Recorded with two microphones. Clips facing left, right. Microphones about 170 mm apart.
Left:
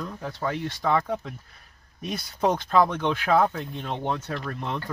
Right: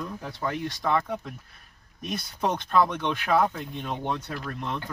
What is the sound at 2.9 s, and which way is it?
Speech, 10° right (ahead or behind).